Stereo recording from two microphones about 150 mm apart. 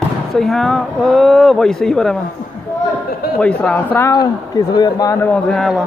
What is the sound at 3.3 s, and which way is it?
Speech, 5° left (ahead or behind).